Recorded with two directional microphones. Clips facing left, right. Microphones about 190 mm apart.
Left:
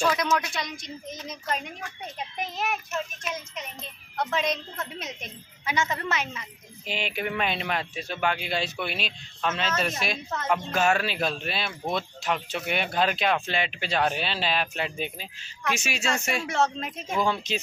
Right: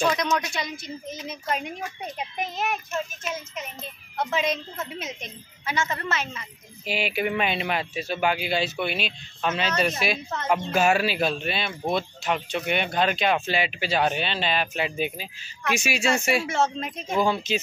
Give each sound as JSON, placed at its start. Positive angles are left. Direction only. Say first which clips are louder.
{"t": 0.0, "sound": "speech", "louder": "right 1 dB", "side_deg": 5}
{"t": 5.7, "sound": "a woman's voice", "louder": "even", "side_deg": 15}
{"t": 6.9, "sound": "speech", "louder": "right 4 dB", "side_deg": -5}